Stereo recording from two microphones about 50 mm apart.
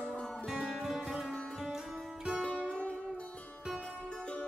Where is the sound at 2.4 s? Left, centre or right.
Centre.